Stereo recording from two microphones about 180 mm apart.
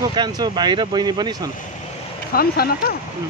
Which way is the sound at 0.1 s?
25° right (ahead or behind).